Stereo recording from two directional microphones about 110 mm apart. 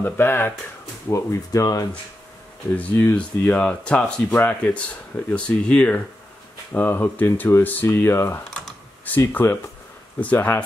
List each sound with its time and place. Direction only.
0.0 s speech: 20° left (ahead or behind)
2.7 s speech: 15° left (ahead or behind)